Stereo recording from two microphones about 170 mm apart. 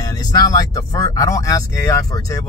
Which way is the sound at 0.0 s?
20° left (ahead or behind).